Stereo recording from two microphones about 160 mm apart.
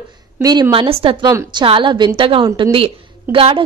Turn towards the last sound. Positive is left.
turn(degrees=-35)  # may be behind; listen again after turning